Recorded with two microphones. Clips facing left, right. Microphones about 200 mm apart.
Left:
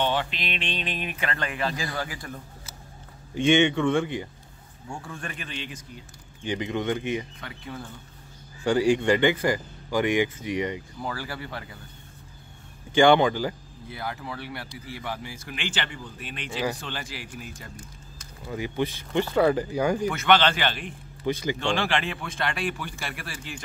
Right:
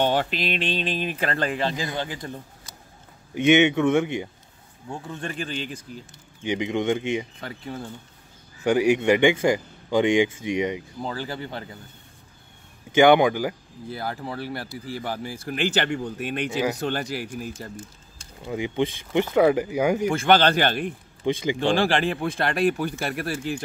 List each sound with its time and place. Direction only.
0.0 s a man's voice: 45° right (ahead or behind); by 3.9 s 10° right (ahead or behind)
3.9 s speech: 20° right (ahead or behind)
6.4 s speech: 20° right (ahead or behind)
7.3 s a man's voice: 30° right (ahead or behind)
8.6 s speech: 15° right (ahead or behind)
9.3 s speech: 20° right (ahead or behind)
12.9 s speech: 15° right (ahead or behind)
13.8 s a man's voice: 35° right (ahead or behind)
17.7 s speech: 25° right (ahead or behind)
20.0 s a man's voice: 30° right (ahead or behind); by 20.9 s 45° right (ahead or behind)
21.2 s speech: 25° right (ahead or behind)
21.5 s a man's voice: 35° right (ahead or behind)